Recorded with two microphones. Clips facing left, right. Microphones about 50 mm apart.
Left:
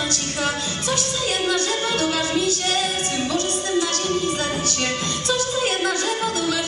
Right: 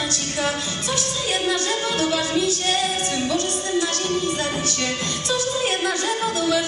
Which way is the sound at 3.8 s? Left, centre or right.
Right.